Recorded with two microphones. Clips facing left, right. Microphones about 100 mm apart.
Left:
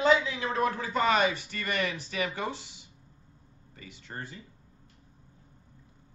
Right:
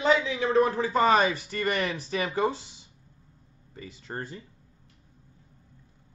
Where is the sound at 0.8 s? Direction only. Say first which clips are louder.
Right 4 dB; 35° right (ahead or behind).